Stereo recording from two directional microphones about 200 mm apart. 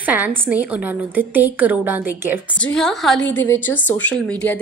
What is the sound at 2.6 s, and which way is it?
A woman's voice, 5° left (ahead or behind).